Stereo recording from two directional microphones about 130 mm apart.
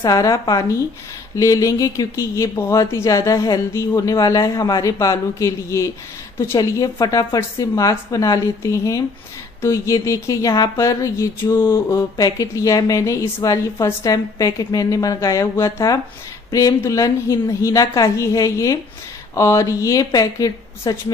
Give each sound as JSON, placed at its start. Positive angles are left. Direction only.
{"t": 0.0, "sound": "speech", "side_deg": 25}